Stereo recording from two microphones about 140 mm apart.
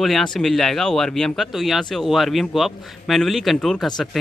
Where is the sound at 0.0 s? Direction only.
5° left (ahead or behind).